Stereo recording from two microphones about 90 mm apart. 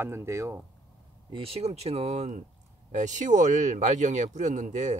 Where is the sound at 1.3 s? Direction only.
90° right.